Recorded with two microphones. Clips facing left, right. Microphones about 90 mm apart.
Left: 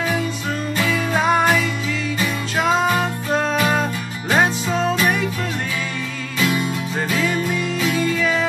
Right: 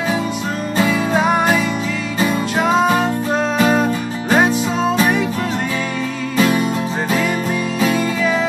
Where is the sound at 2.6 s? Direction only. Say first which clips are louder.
Right 3 dB; 15° right (ahead or behind).